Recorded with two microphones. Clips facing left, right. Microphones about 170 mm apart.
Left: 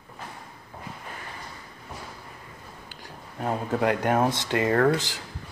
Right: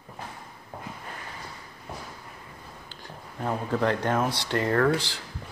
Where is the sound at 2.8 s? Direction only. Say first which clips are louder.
Even; 15° left (ahead or behind).